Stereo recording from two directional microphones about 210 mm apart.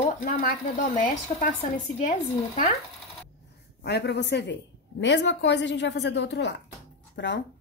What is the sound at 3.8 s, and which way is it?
A woman's voice, 50° left (ahead or behind).